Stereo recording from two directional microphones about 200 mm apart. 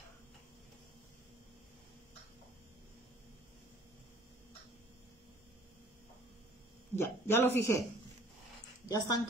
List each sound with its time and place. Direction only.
7.0 s speech: 10° left (ahead or behind)
8.8 s speech: 20° left (ahead or behind)